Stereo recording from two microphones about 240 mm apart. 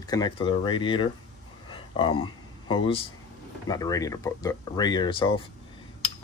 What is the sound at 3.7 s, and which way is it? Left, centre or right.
Speech, centre.